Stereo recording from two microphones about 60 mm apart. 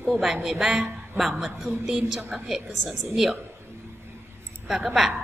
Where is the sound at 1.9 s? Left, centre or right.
Centre.